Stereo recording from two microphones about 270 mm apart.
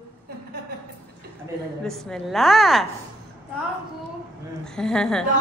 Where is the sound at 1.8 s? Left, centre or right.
Centre.